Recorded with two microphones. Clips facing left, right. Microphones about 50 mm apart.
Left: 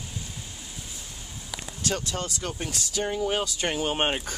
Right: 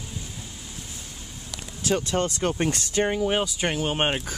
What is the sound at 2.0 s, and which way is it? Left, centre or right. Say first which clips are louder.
Speech: right 7 dB; right.